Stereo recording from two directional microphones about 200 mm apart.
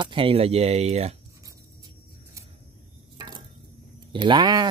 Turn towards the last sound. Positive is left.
turn(degrees=-20)  # may be behind; listen again after turning